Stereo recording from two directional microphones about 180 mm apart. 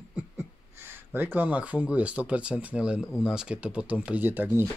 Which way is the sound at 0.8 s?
10° right (ahead or behind).